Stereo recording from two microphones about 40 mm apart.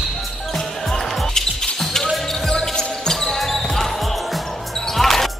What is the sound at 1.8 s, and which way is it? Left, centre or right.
Basketball bounce, centre.